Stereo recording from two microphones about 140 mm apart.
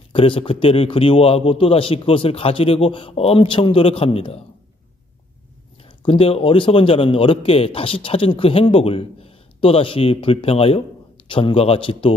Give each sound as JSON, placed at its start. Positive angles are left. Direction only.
{"t": 0.1, "sound": "a man's voice", "side_deg": 40}
{"t": 6.0, "sound": "a man's voice", "side_deg": 40}